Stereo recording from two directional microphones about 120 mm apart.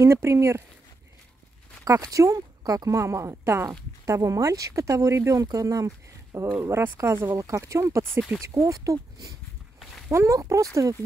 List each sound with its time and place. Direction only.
0.0 s speech: 25° right (ahead or behind)
1.9 s speech: 30° right (ahead or behind)
9.8 s a sound: centre (ahead or behind)
10.1 s speech: 25° right (ahead or behind)